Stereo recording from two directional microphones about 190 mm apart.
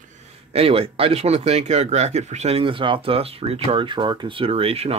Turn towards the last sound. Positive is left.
turn(degrees=-30)  # may be behind; listen again after turning